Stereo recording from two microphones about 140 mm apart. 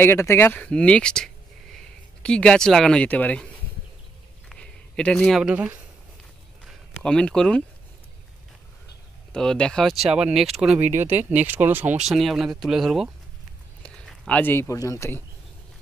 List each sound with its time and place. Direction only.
0.0 s speech: 15° left (ahead or behind)
4.5 s a sound: 5° left (ahead or behind); by 5.8 s 10° right (ahead or behind)
7.0 s speech: 5° left (ahead or behind)
9.3 s speech: 5° left (ahead or behind)
10.8 s speech: 55° right (ahead or behind)
11.4 s speech: 15° right (ahead or behind)
12.0 s speech: centre (ahead or behind); by 15.2 s 20° left (ahead or behind)